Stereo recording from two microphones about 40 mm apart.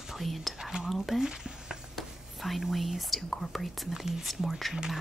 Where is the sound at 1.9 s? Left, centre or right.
Centre.